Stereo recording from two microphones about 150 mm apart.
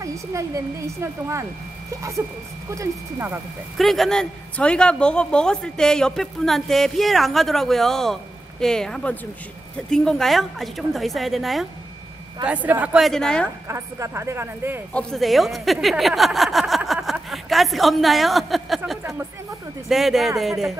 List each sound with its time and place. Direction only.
0.0 s speech: 20° right (ahead or behind)
2.7 s speech: 20° right (ahead or behind)
3.7 s a woman's voice: centre (ahead or behind)
12.6 s speech: 10° right (ahead or behind)
13.0 s a woman's voice: 5° left (ahead or behind)
13.7 s speech: 20° right (ahead or behind)
15.0 s a woman's voice: 5° left (ahead or behind)
19.9 s a woman's voice: centre (ahead or behind)